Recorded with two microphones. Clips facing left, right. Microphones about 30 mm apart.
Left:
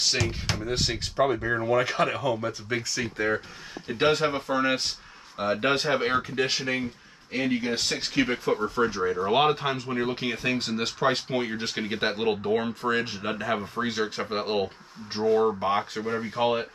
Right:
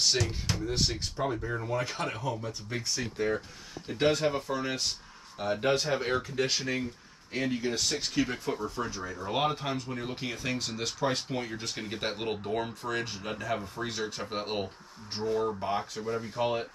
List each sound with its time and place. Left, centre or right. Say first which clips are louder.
0.3 s speech: left 4 dB; left
3.3 s speech: left 4 dB; left